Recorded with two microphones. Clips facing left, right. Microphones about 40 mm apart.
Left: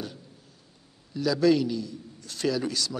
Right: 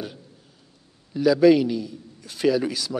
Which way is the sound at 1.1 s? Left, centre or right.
Centre.